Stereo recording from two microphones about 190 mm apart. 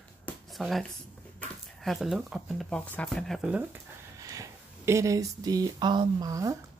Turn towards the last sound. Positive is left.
turn(degrees=-15)  # may be behind; listen again after turning